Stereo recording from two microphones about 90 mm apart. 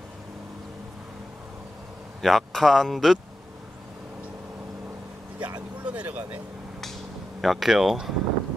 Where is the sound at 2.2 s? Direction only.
Centre (ahead or behind).